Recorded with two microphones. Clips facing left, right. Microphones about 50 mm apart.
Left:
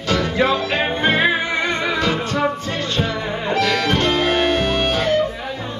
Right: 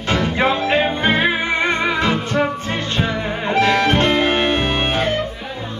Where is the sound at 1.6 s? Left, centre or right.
Right.